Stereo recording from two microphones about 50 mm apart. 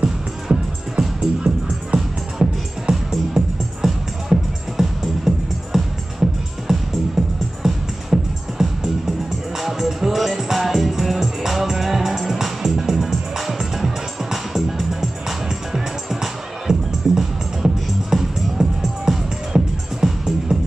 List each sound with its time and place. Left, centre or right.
0.0 s music: centre